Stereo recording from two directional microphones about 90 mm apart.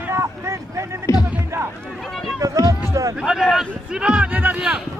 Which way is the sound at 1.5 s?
30° right (ahead or behind).